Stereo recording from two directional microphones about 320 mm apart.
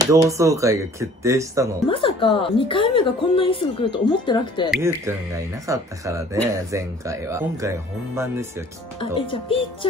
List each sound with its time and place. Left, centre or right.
0.1 s speech: centre
1.9 s speech: centre
4.8 s speech: centre
9.2 s speech: centre